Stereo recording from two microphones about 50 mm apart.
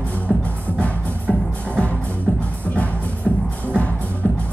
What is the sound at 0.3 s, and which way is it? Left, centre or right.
Music, left.